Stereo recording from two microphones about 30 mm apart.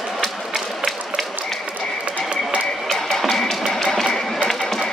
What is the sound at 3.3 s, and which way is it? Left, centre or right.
Music, centre.